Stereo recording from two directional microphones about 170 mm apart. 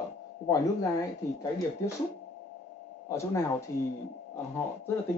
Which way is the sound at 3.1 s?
15° left (ahead or behind).